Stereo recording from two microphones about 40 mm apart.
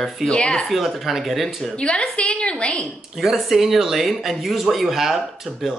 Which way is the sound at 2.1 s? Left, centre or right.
Left.